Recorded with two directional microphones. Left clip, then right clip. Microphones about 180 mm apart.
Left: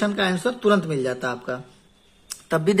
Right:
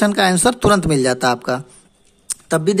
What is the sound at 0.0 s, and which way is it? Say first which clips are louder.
Speech: right 8 dB; 45° right (ahead or behind).